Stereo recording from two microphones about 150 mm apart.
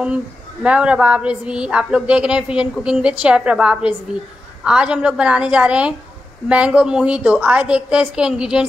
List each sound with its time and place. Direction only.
0.6 s speech: 5° right (ahead or behind)